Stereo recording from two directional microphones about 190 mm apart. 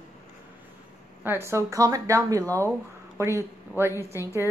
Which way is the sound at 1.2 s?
10° right (ahead or behind).